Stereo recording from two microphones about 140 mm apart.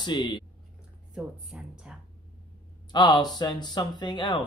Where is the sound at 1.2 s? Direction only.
Centre (ahead or behind).